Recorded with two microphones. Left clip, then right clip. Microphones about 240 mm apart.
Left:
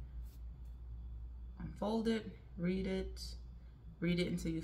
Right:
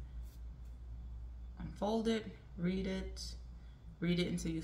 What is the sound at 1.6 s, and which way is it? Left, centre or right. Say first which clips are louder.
Speech: right 2 dB; centre.